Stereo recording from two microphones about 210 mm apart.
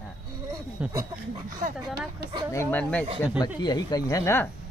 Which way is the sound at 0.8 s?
15° right (ahead or behind).